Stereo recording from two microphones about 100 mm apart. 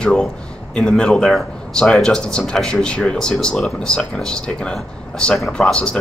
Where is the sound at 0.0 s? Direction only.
10° left (ahead or behind).